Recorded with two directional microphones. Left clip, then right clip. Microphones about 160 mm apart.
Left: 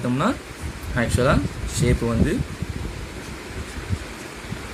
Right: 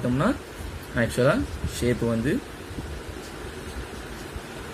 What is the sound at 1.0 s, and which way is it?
Speech, 10° left (ahead or behind).